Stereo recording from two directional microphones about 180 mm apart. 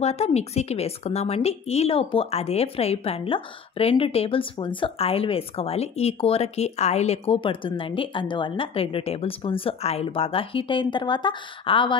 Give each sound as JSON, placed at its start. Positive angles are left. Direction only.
{"t": 0.0, "sound": "a woman's voice", "side_deg": 35}